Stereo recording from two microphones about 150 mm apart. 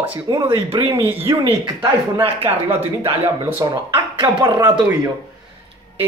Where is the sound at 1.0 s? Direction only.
15° right (ahead or behind).